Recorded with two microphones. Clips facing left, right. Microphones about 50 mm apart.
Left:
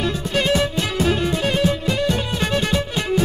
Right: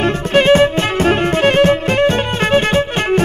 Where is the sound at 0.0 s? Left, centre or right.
Right.